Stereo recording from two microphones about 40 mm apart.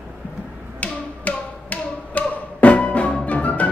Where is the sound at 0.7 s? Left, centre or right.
Left.